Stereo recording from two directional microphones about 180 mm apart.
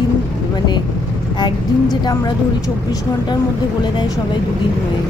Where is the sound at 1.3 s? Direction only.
25° left (ahead or behind).